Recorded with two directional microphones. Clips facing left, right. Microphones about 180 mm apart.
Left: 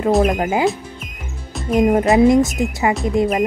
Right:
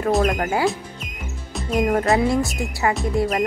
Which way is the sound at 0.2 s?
15° left (ahead or behind).